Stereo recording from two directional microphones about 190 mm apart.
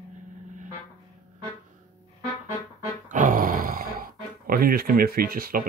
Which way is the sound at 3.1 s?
45° right (ahead or behind).